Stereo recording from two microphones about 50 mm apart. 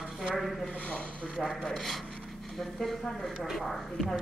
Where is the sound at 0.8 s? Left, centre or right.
Centre.